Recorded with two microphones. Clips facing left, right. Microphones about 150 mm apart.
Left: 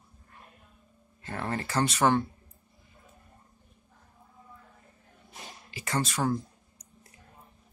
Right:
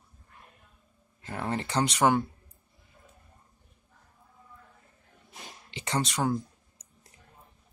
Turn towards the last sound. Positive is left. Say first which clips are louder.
# even
turn(degrees=-20)  # may be behind; listen again after turning